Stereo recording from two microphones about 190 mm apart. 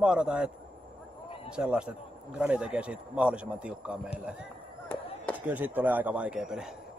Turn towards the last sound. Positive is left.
turn(degrees=-5)  # may be behind; listen again after turning